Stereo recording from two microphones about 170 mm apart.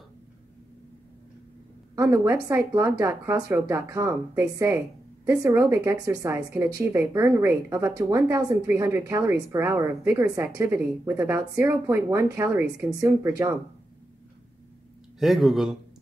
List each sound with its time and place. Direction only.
2.0 s speech: 15° right (ahead or behind)
15.1 s speech: centre (ahead or behind)